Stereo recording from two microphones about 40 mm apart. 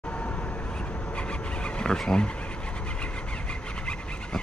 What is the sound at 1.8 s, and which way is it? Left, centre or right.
Vehicle, centre.